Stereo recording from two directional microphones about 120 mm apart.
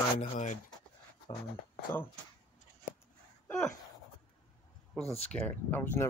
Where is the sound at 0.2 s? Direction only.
90° left.